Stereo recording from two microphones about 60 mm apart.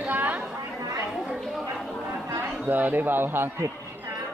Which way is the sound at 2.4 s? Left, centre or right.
Right.